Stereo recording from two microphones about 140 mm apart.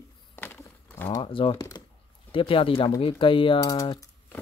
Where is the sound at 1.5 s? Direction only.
25° left (ahead or behind).